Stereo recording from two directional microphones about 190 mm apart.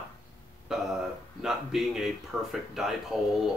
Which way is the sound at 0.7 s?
Centre (ahead or behind).